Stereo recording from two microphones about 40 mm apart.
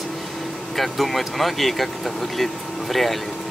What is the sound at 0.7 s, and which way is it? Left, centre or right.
Speech, centre.